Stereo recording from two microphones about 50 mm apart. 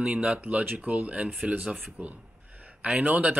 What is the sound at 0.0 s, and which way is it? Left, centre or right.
Speech, right.